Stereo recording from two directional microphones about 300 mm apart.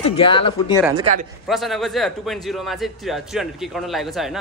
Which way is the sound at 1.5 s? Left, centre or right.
Centre.